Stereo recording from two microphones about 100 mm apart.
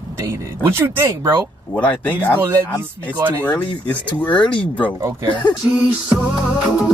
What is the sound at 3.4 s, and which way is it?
Speech, 15° left (ahead or behind).